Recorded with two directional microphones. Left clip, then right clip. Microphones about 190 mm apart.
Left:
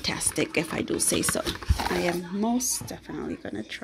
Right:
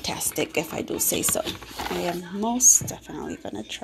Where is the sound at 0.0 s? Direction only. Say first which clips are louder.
Even; 40° left (ahead or behind).